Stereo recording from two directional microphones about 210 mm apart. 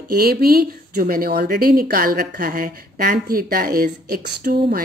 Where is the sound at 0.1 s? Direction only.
45° right (ahead or behind).